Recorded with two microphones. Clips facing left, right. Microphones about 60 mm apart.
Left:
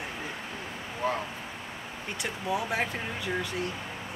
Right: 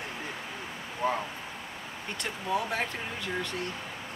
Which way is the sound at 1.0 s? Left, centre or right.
Centre.